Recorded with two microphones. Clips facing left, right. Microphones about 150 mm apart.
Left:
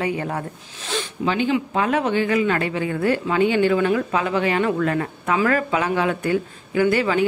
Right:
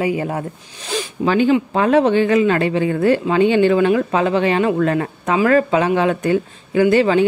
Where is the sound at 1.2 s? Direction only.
45° right (ahead or behind).